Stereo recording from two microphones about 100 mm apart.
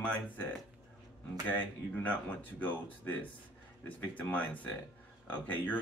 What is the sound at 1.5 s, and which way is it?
Speech, 15° left (ahead or behind).